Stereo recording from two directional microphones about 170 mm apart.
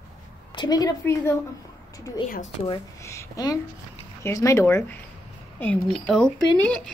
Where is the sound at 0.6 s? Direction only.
20° left (ahead or behind).